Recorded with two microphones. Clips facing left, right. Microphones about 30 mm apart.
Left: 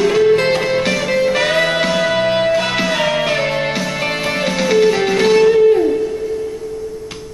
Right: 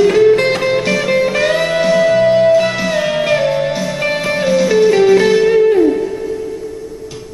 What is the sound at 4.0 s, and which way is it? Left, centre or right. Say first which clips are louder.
Music: right 5 dB; left.